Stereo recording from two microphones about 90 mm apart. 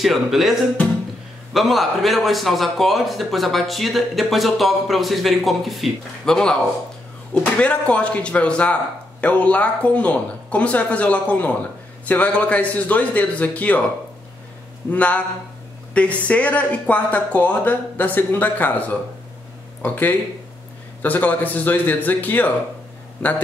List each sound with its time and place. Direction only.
0.0 s a man's voice: centre (ahead or behind); by 13.8 s 15° left (ahead or behind)
14.9 s a man's voice: 15° left (ahead or behind)